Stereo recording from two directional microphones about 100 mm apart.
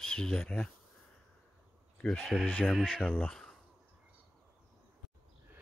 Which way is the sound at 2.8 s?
15° left (ahead or behind).